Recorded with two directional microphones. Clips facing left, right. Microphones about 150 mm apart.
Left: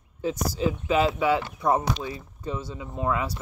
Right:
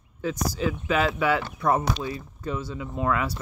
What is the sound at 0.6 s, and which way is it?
Speech, 25° left (ahead or behind).